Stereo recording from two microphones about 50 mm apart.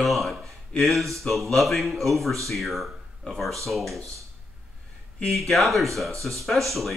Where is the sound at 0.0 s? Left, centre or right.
Centre.